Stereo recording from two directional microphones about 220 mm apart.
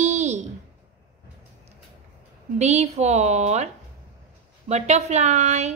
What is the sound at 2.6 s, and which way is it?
A woman's voice, 30° right (ahead or behind).